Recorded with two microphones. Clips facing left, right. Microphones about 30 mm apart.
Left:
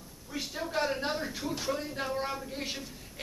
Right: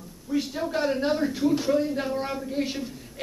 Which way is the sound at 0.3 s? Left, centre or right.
Centre.